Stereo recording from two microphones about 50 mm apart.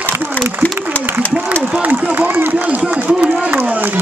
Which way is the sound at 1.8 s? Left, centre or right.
Right.